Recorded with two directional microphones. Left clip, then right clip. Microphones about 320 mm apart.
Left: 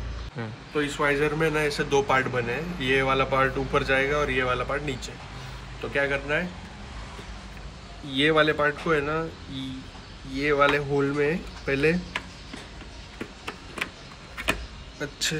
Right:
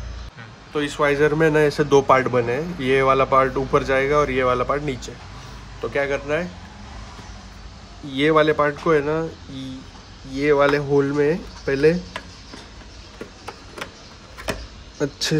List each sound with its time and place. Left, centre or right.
0.7 s a man's voice: right
8.1 s a man's voice: centre
10.3 s a man's voice: right
15.0 s a man's voice: right